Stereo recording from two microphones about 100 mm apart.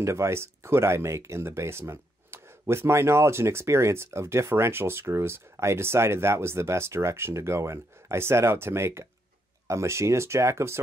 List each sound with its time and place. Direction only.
0.0 s speech: 30° right (ahead or behind)